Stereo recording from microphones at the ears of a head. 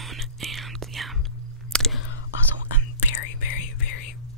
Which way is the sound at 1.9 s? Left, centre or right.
Left.